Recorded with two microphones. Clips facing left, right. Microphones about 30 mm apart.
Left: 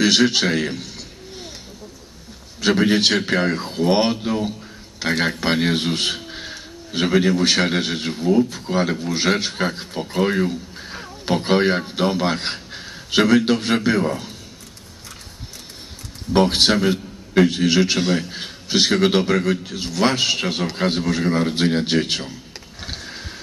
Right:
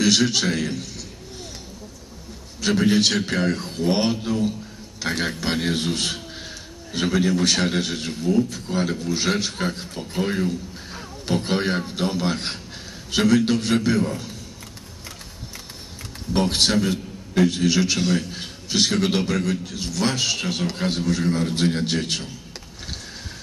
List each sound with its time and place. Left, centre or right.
0.0 s a sound: left
2.6 s a man's voice: left
16.3 s speech: left